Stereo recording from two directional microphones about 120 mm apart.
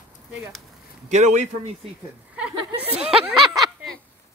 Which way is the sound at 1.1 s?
85° right.